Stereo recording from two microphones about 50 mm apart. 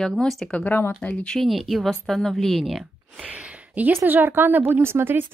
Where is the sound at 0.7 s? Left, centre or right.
Left.